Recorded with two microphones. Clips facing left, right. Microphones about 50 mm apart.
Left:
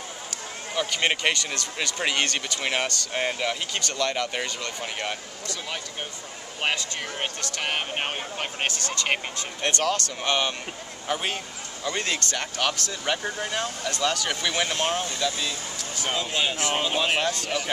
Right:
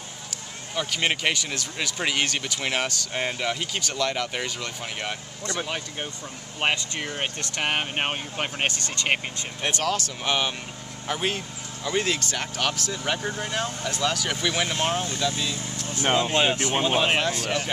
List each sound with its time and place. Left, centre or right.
0.7 s speech: centre
6.6 s speech: centre
8.6 s speech: right
9.1 s speech: centre
15.8 s speech: right
16.8 s speech: centre
17.2 s speech: centre